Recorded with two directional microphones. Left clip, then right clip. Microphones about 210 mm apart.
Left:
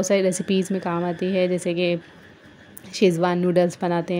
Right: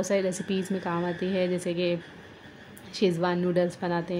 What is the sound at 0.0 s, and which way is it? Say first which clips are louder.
A woman's voice: left 6 dB; 25° left (ahead or behind).